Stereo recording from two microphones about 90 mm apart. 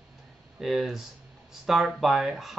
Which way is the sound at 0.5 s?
Centre (ahead or behind).